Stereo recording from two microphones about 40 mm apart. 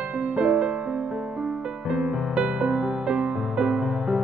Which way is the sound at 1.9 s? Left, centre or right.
Right.